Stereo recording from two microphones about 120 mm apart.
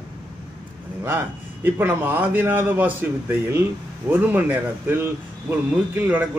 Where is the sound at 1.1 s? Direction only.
20° right (ahead or behind).